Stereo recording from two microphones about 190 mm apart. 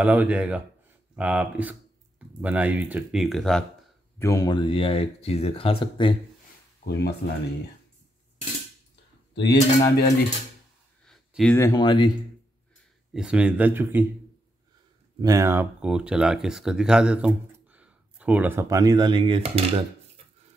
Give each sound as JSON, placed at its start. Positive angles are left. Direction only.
{"t": 0.0, "sound": "speech", "side_deg": -10}
{"t": 4.2, "sound": "speech", "side_deg": 15}
{"t": 6.8, "sound": "speech", "side_deg": 60}
{"t": 9.3, "sound": "cutlery", "side_deg": 60}
{"t": 11.1, "sound": "a sound", "side_deg": 0}
{"t": 11.5, "sound": "speech", "side_deg": 15}
{"t": 13.1, "sound": "speech", "side_deg": -5}
{"t": 15.1, "sound": "speech", "side_deg": -15}